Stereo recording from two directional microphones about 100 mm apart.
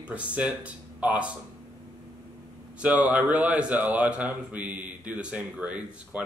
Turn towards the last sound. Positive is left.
turn(degrees=-15)  # may be behind; listen again after turning